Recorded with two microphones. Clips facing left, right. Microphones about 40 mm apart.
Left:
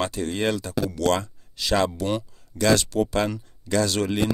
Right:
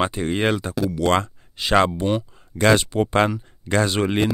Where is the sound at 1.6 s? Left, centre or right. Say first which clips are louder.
Right 5 dB; right.